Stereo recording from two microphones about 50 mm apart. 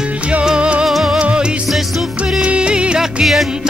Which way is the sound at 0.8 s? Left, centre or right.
Centre.